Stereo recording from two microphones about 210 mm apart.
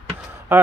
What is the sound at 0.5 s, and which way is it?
Speech, 15° right (ahead or behind).